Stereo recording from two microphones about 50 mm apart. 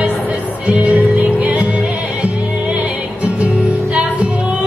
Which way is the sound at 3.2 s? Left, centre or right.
Right.